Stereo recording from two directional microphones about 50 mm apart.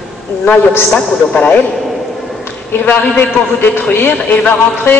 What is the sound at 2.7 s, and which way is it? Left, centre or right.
A man's voice, left.